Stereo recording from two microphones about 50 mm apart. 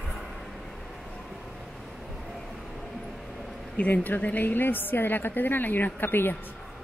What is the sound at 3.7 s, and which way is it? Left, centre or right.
A woman's voice, left.